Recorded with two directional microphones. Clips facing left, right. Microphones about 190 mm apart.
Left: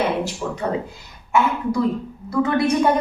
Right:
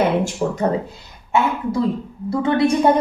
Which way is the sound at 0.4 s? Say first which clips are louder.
Right 5 dB; 45° right (ahead or behind).